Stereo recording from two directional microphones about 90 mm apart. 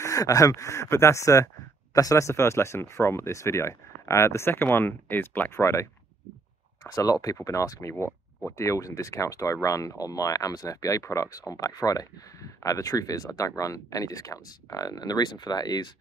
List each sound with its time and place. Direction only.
0.0 s speech: 40° left (ahead or behind); by 5.5 s 20° left (ahead or behind)
5.5 s speech: 30° left (ahead or behind)
6.8 s speech: 45° left (ahead or behind)